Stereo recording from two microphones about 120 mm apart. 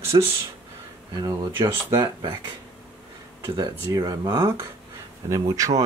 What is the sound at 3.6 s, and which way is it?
Speech, 30° right (ahead or behind).